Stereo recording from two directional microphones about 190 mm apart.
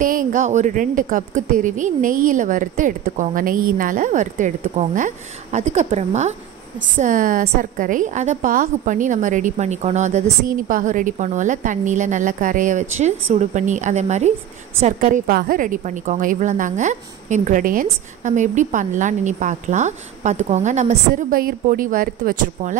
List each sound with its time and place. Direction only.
0.0 s a woman's voice: 45° right (ahead or behind)